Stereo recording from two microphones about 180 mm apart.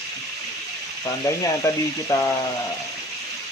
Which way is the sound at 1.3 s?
15° left (ahead or behind).